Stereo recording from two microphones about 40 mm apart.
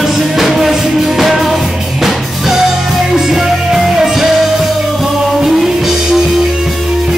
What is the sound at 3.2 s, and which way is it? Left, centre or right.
Music, centre.